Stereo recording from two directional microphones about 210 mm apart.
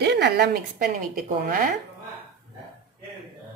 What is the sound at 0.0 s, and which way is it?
Speech, 55° right (ahead or behind).